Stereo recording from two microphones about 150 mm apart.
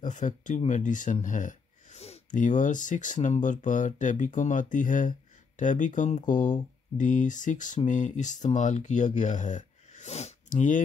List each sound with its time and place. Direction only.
0.0 s speech: 55° left (ahead or behind)